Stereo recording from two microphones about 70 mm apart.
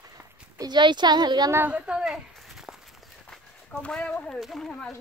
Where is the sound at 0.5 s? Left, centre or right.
Right.